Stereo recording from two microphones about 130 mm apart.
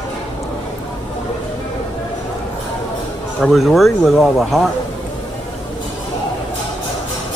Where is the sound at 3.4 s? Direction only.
Centre (ahead or behind).